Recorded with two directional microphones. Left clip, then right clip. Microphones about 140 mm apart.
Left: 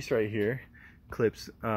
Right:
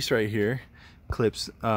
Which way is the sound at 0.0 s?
20° right (ahead or behind).